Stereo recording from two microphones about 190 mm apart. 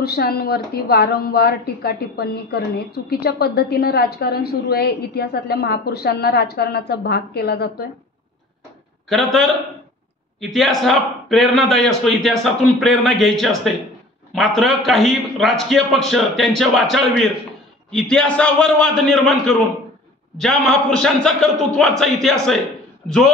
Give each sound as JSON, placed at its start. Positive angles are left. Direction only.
{"t": 0.0, "sound": "a woman's voice", "side_deg": 55}
{"t": 9.1, "sound": "a man's voice", "side_deg": 0}
{"t": 10.5, "sound": "a man's voice", "side_deg": 0}